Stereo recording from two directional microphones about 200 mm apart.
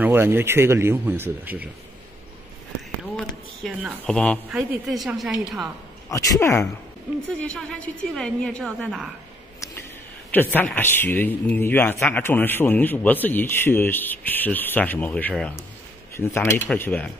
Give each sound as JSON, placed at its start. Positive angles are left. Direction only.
{"t": 0.0, "sound": "speech", "side_deg": -10}
{"t": 3.2, "sound": "speech", "side_deg": 5}
{"t": 6.0, "sound": "a man's voice", "side_deg": 15}
{"t": 7.2, "sound": "speech", "side_deg": 5}
{"t": 10.3, "sound": "a man's voice", "side_deg": 10}